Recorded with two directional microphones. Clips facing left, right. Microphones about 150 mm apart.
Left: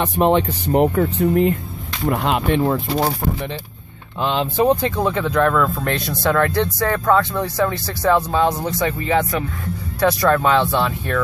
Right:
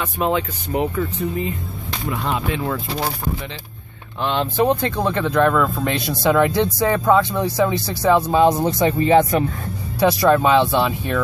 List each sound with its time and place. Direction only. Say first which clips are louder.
0.2 s speech: left 5 dB; 45° left (ahead or behind); by 2.6 s 60° left (ahead or behind)
2.6 s speech: left 5 dB; 35° left (ahead or behind)
4.2 s speech: left 1 dB; 10° left (ahead or behind); by 9.4 s 30° right (ahead or behind)
9.9 s speech: right 1 dB; 10° right (ahead or behind)